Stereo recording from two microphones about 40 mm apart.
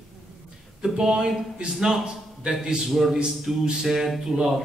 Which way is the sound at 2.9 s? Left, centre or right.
Centre.